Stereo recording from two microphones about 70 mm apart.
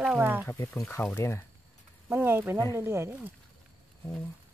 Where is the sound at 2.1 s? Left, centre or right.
Right.